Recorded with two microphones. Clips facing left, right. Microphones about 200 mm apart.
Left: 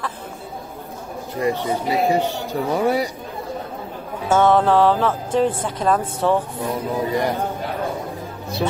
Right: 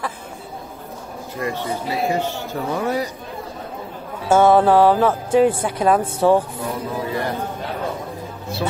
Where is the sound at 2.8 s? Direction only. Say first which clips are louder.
Left 3 dB; 10° left (ahead or behind).